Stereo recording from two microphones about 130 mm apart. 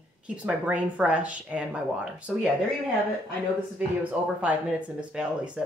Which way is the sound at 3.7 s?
10° right (ahead or behind).